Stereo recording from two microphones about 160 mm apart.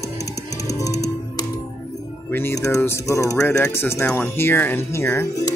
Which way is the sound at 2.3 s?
15° left (ahead or behind).